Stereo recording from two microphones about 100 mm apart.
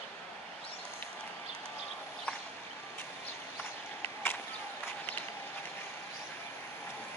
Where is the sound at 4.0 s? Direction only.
20° left (ahead or behind).